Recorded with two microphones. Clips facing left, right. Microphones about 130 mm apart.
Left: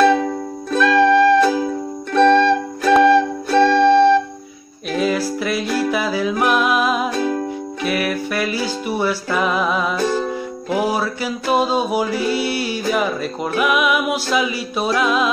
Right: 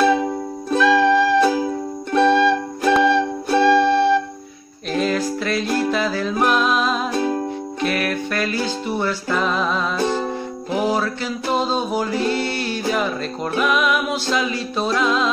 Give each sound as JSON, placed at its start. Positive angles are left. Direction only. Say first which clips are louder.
{"t": 0.0, "sound": "music", "louder": "left 2 dB", "side_deg": -15}
{"t": 0.7, "sound": "music", "louder": "left 2 dB", "side_deg": -5}
{"t": 4.9, "sound": "music", "louder": "left 1 dB", "side_deg": 5}
{"t": 7.2, "sound": "music", "louder": "left 1 dB", "side_deg": -25}
{"t": 7.8, "sound": "music", "louder": "left 1 dB", "side_deg": 5}